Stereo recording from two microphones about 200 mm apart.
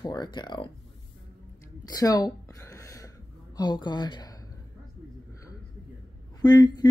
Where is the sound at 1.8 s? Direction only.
20° left (ahead or behind).